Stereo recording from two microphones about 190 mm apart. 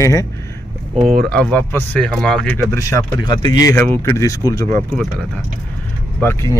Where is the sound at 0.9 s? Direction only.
40° right (ahead or behind).